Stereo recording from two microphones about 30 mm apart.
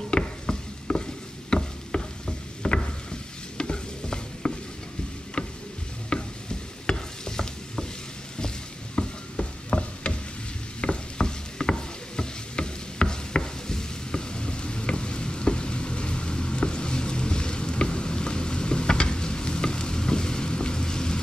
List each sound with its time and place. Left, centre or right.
0.1 s stir: left
1.5 s a sound: left
3.5 s stir: left
5.4 s a sound: left
6.1 s stir: left
6.9 s stir: left
8.9 s stir: left